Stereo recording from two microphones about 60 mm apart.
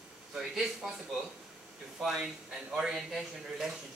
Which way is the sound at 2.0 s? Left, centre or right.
Centre.